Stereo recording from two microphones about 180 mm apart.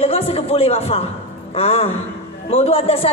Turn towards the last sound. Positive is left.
turn(degrees=35)  # may be behind; listen again after turning